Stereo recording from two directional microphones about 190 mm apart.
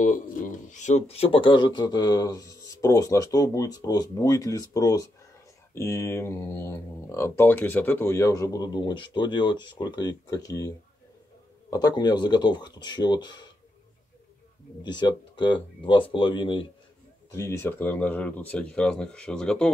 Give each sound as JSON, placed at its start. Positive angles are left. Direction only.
{"t": 0.0, "sound": "speech", "side_deg": 45}
{"t": 11.7, "sound": "speech", "side_deg": 20}
{"t": 14.8, "sound": "speech", "side_deg": 25}
{"t": 17.3, "sound": "speech", "side_deg": 15}